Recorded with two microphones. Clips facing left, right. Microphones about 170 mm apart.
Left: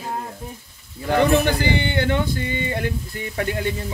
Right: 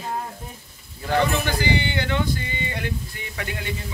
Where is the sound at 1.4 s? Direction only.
55° left (ahead or behind).